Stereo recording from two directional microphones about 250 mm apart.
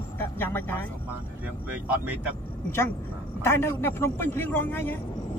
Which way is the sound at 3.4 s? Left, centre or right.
Centre.